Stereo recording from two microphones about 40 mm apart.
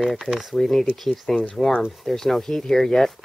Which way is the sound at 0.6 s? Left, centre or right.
Centre.